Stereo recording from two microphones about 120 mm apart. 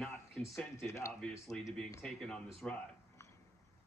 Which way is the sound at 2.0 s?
5° left (ahead or behind).